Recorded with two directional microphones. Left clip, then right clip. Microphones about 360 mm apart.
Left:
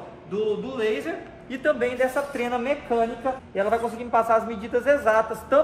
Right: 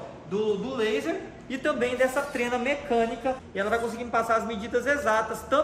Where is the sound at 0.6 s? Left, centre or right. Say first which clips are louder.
Left 1 dB; centre.